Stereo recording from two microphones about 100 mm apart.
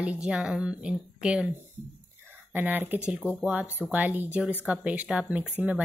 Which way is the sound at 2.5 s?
20° right (ahead or behind).